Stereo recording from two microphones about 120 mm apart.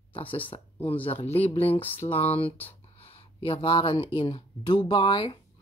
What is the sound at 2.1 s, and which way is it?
Speech, 55° left (ahead or behind).